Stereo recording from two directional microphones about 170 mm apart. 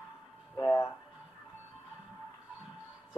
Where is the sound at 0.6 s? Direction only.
15° left (ahead or behind).